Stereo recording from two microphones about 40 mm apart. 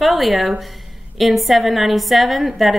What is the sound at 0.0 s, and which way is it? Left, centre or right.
A woman's voice, centre.